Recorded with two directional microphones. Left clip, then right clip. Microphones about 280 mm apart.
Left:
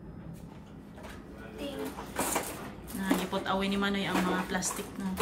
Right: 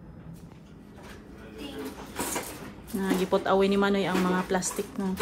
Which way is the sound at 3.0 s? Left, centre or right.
Centre.